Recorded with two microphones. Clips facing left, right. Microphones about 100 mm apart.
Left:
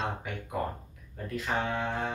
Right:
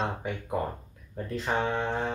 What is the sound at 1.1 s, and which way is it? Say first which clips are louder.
Speech: right 3 dB; 30° right (ahead or behind).